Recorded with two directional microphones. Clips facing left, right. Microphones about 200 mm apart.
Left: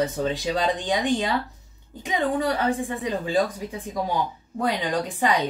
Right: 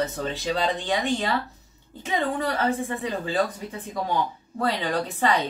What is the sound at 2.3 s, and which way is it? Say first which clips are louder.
Speech: left 2 dB; 15° left (ahead or behind).